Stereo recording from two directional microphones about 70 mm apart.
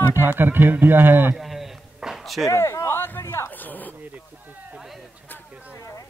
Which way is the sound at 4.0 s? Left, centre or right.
Right.